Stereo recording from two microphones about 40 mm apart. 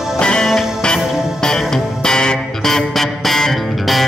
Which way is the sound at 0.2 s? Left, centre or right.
Left.